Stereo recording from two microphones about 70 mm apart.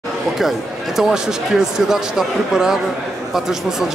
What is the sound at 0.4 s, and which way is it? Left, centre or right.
Speech, centre.